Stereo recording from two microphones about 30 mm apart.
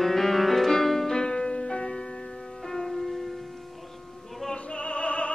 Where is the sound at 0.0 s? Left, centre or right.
Centre.